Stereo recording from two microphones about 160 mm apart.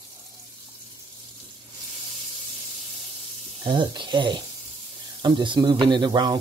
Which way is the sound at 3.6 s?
30° right (ahead or behind).